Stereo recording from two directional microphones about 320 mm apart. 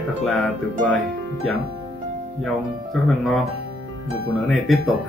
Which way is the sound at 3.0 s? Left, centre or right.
Centre.